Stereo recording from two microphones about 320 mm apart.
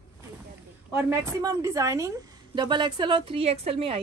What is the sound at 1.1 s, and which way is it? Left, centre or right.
A woman's voice, centre.